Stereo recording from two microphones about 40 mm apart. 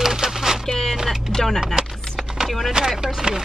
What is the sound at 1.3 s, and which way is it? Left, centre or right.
Speech, centre.